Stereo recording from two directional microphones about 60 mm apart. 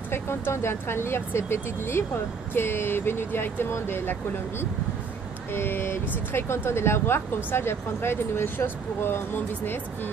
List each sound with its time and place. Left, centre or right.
0.1 s speech: left